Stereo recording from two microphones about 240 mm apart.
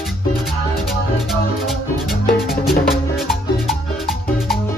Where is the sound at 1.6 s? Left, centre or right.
Centre.